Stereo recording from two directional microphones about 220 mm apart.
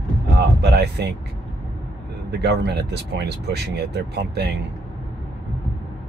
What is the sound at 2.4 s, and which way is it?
Speech, 50° right (ahead or behind).